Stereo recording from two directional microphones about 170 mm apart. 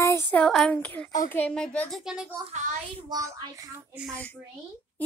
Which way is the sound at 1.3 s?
10° left (ahead or behind).